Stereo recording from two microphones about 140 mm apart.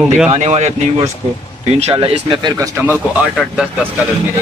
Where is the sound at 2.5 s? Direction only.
25° right (ahead or behind).